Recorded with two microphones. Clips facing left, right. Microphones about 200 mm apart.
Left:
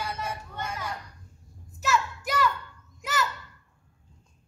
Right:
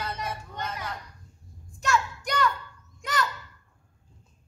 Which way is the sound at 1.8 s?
5° left (ahead or behind).